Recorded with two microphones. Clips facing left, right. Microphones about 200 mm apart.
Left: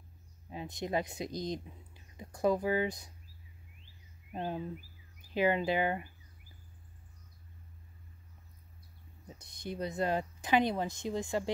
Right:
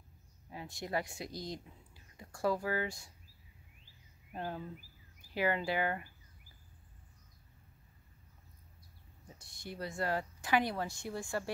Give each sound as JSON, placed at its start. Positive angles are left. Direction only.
{"t": 0.5, "sound": "speech", "side_deg": 20}
{"t": 4.3, "sound": "speech", "side_deg": 20}
{"t": 9.2, "sound": "speech", "side_deg": 20}